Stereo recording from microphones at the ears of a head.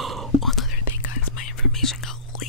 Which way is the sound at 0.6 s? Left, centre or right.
Left.